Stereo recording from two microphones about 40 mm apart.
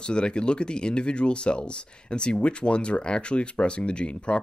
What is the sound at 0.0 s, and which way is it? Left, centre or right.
Speech, left.